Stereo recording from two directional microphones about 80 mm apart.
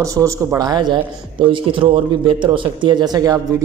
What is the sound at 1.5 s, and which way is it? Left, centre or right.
Speech, right.